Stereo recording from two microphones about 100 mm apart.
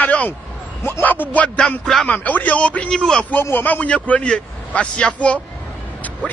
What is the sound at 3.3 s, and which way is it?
A man's voice, 20° left (ahead or behind).